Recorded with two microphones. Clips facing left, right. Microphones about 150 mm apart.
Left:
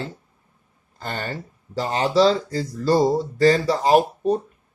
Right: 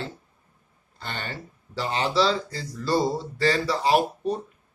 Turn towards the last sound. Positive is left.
turn(degrees=45)  # may be behind; listen again after turning